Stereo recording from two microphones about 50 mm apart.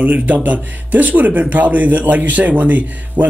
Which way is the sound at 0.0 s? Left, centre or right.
Right.